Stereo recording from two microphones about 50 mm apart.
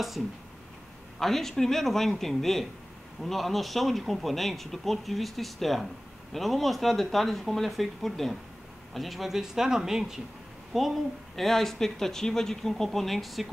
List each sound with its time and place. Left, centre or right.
1.2 s speech: centre